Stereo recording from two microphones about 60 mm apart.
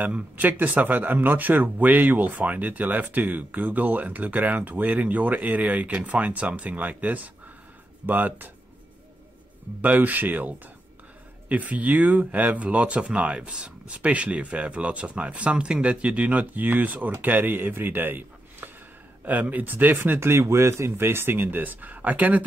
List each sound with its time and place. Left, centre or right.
0.0 s speech: right
9.8 s speech: right